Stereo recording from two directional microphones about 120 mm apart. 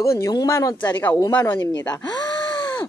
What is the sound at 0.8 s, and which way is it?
Speech, 15° left (ahead or behind).